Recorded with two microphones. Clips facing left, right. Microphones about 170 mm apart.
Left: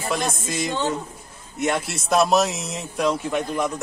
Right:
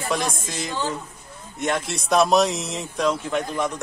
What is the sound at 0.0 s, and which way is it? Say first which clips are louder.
A man's voice: even; centre (ahead or behind).